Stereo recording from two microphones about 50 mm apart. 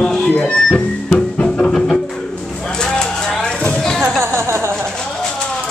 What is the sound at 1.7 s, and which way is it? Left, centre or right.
Music, centre.